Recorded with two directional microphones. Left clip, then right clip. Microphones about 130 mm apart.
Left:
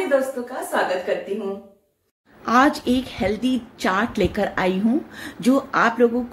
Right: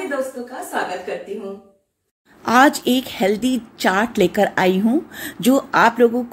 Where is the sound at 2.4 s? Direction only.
25° right (ahead or behind).